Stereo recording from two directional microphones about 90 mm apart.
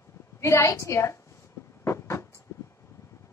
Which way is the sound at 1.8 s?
30° left (ahead or behind).